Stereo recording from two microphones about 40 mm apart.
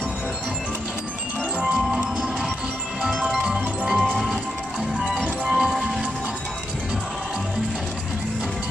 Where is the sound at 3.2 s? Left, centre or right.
Centre.